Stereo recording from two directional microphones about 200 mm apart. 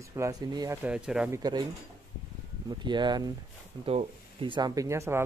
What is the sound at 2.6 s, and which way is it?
Speech, 20° right (ahead or behind).